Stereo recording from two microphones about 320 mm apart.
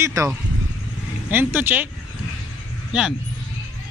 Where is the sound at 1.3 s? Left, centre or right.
Centre.